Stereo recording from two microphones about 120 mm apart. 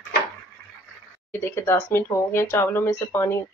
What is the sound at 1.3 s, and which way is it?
Speech, 20° left (ahead or behind).